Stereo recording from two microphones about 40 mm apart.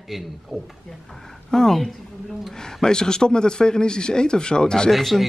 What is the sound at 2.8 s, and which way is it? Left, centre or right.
Speech, centre.